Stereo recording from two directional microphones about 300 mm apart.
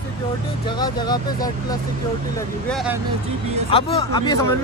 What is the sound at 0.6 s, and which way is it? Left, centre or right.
Speech, centre.